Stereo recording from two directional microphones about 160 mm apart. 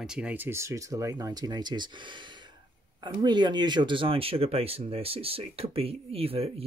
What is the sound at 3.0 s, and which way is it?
Speech, 30° right (ahead or behind).